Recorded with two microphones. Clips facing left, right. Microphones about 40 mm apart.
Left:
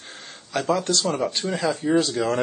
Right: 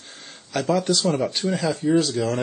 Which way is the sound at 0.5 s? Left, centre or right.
Centre.